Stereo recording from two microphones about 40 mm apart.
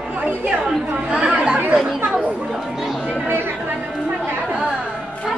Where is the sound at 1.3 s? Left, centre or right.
Right.